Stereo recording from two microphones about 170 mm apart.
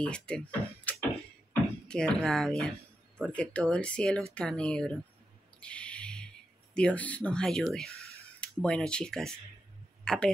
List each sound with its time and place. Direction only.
0.0 s speech: 5° left (ahead or behind)
5.6 s a sound: 5° left (ahead or behind)
6.7 s speech: 5° left (ahead or behind)